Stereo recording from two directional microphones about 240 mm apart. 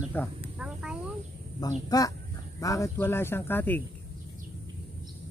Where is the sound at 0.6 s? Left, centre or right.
Centre.